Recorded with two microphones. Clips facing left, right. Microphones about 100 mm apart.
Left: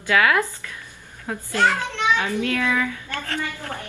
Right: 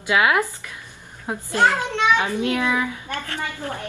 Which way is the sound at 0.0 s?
20° right (ahead or behind).